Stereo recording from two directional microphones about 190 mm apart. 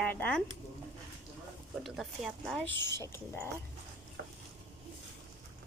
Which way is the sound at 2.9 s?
15° left (ahead or behind).